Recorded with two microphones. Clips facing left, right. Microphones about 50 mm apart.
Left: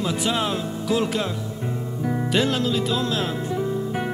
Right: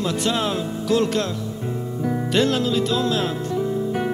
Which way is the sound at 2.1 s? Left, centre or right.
Centre.